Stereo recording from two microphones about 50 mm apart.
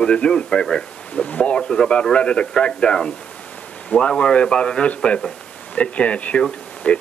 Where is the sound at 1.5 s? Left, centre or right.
Centre.